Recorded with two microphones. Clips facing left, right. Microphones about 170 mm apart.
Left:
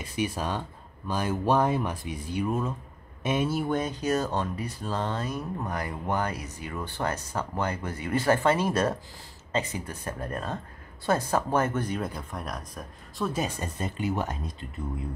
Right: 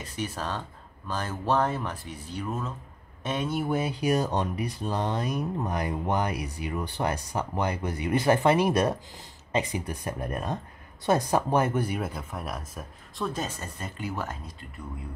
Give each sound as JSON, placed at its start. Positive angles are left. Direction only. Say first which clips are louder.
{"t": 0.0, "sound": "speech", "louder": "left 3 dB", "side_deg": 10}
{"t": 13.3, "sound": "speech", "louder": "left 3 dB", "side_deg": 15}